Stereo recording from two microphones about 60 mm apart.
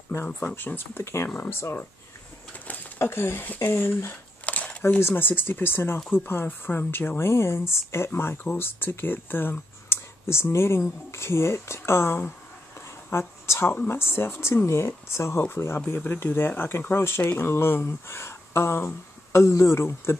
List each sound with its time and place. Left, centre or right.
0.2 s speech: left
3.0 s speech: left
4.5 s a sound: left
5.0 s speech: left